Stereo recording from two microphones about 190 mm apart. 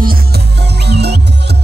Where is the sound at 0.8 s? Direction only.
60° right (ahead or behind).